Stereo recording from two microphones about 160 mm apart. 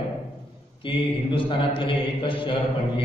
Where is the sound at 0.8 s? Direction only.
30° left (ahead or behind).